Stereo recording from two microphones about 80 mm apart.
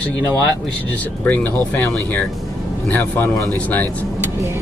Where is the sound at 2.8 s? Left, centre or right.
Left.